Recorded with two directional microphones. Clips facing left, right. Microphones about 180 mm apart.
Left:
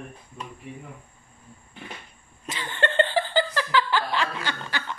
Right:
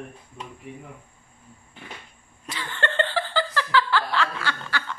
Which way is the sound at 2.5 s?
20° left (ahead or behind).